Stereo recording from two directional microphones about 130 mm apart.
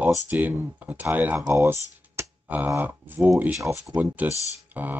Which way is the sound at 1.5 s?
20° right (ahead or behind).